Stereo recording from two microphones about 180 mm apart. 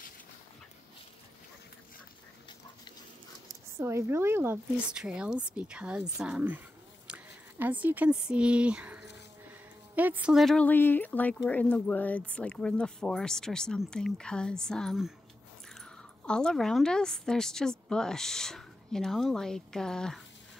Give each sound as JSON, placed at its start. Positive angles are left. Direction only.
{"t": 3.8, "sound": "speech", "side_deg": -15}